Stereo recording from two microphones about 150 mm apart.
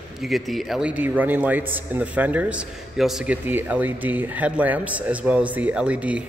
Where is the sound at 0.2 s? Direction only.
Centre (ahead or behind).